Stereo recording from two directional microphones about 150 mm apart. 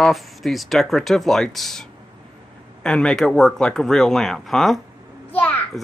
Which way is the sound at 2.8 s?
5° left (ahead or behind).